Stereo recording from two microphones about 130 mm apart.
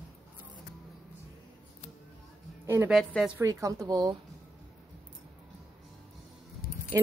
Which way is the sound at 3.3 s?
25° right (ahead or behind).